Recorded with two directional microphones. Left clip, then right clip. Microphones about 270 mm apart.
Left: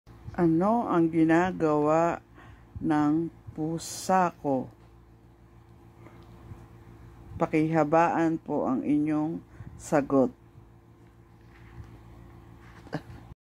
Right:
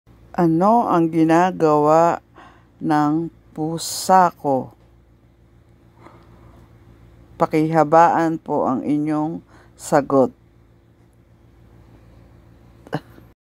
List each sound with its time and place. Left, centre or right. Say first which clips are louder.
0.4 s speech: right 9 dB; right
7.3 s speech: right 8 dB; right